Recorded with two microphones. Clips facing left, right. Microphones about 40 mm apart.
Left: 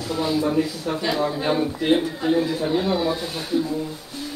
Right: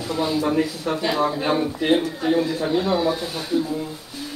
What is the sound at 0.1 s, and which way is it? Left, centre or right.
Speech, centre.